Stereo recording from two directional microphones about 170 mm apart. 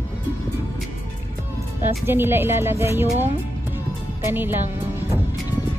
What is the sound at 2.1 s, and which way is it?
Speech, 15° right (ahead or behind).